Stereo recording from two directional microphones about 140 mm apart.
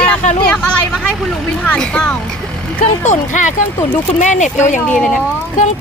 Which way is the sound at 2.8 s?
60° left (ahead or behind).